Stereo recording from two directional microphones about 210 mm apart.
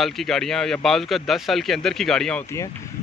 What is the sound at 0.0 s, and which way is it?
Speech, centre (ahead or behind).